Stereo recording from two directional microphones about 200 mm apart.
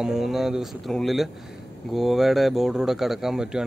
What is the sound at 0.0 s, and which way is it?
Speech, centre (ahead or behind).